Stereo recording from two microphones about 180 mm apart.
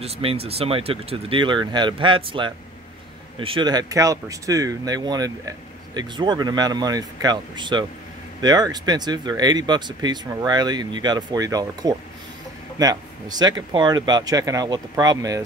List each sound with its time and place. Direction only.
0.0 s speech: 35° right (ahead or behind)